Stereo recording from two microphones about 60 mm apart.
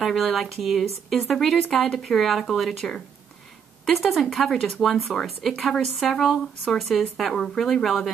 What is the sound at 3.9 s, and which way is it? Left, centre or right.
A woman's voice, centre.